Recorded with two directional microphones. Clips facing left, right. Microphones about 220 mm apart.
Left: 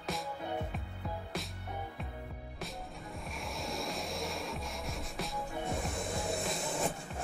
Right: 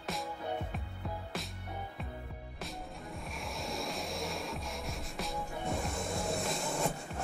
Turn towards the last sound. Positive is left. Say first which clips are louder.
# right 1 dB
turn(degrees=0)  # may be behind; listen again after turning